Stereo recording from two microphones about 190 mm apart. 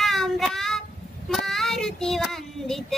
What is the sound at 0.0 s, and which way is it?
Child singing, centre (ahead or behind).